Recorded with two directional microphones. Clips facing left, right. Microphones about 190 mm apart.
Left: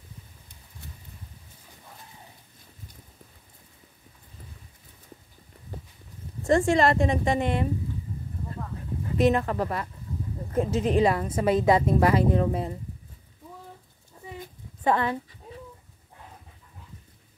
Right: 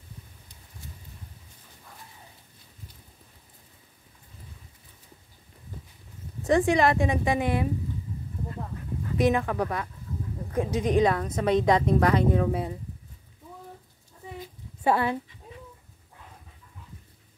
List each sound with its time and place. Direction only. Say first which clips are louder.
6.4 s a woman's voice: left 1 dB; centre (ahead or behind)
9.2 s a woman's voice: left 1 dB; centre (ahead or behind)
14.8 s speech: even; 10° right (ahead or behind)